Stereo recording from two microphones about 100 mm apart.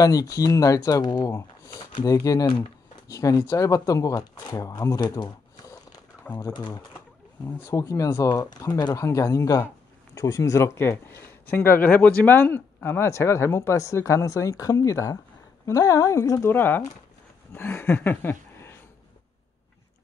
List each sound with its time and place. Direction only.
0.0 s speech: 35° left (ahead or behind)
2.4 s speech: 60° left (ahead or behind)
3.1 s speech: 35° left (ahead or behind)
6.3 s speech: 15° left (ahead or behind)
7.4 s a man's voice: 35° left (ahead or behind)